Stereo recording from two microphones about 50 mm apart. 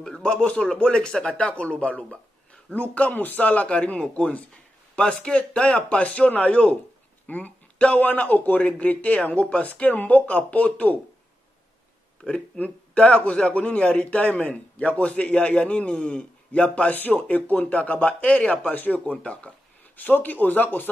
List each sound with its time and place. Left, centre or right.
0.0 s speech: centre; by 11.0 s left
12.2 s speech: left
16.9 s speech: left